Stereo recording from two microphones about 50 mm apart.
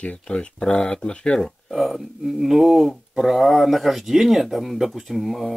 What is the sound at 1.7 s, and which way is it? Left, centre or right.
Speech, centre.